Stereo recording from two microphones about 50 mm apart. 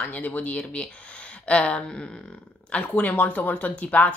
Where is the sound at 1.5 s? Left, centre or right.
Centre.